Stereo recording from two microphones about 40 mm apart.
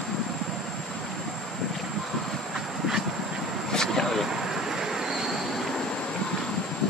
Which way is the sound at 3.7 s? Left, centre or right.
Centre.